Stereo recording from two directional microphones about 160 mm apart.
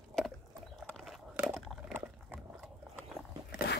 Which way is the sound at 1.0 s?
Centre (ahead or behind).